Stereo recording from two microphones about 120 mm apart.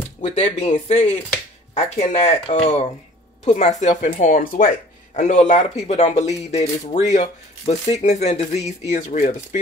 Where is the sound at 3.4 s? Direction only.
70° left (ahead or behind).